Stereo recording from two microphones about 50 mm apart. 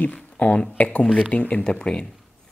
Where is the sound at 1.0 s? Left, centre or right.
Centre.